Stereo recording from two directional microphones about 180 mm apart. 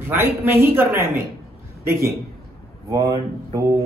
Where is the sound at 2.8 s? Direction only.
20° right (ahead or behind).